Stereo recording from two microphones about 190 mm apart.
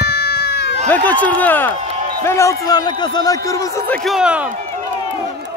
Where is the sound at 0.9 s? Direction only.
10° left (ahead or behind).